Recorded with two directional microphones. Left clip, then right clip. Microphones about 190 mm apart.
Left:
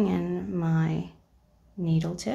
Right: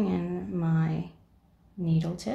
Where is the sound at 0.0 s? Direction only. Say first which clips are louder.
Left 3 dB; 15° left (ahead or behind).